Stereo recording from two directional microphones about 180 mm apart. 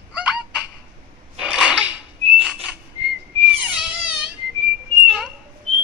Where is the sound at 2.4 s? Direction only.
5° right (ahead or behind).